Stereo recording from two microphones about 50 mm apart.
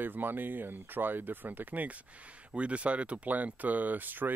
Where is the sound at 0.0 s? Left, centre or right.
Right.